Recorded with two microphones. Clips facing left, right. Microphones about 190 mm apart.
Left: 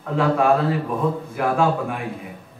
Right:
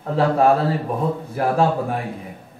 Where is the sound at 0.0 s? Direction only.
35° right (ahead or behind).